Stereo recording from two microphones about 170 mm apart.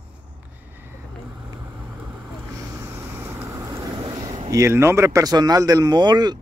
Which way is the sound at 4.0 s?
25° right (ahead or behind).